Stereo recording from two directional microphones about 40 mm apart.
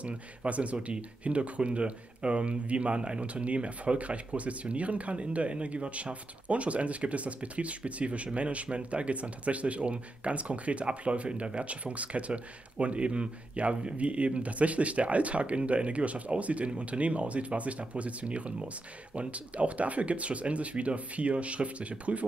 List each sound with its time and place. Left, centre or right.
0.0 s speech: right